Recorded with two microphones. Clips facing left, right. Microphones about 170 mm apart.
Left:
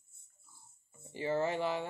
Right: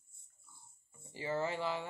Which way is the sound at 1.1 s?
20° left (ahead or behind).